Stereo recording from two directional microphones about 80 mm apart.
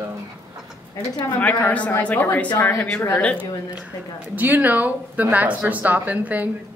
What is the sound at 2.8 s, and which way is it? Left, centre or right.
Speech, centre.